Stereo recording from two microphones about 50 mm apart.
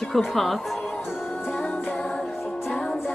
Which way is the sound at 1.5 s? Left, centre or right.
Left.